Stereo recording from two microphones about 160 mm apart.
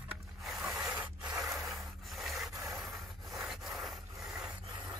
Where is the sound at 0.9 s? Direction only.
15° right (ahead or behind).